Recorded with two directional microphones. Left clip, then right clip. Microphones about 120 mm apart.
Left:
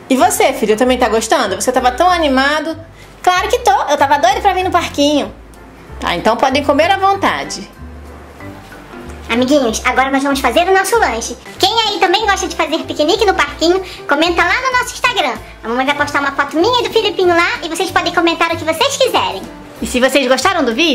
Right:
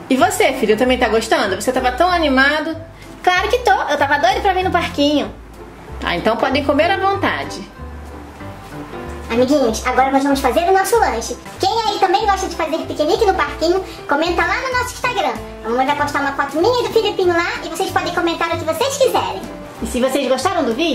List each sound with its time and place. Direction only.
0.1 s a woman's voice: 20° left (ahead or behind)
9.3 s a woman's voice: 30° left (ahead or behind)